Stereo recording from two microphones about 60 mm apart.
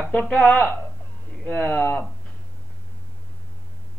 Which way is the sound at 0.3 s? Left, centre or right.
Centre.